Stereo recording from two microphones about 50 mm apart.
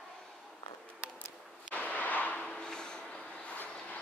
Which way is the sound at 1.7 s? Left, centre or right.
Left.